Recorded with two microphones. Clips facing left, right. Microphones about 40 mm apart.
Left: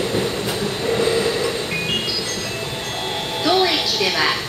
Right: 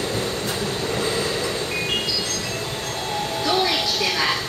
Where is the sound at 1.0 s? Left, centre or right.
Left.